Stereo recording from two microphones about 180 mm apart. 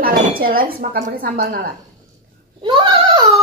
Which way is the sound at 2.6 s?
30° right (ahead or behind).